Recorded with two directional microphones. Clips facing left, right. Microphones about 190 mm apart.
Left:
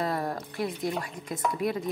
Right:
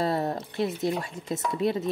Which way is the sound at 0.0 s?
25° right (ahead or behind).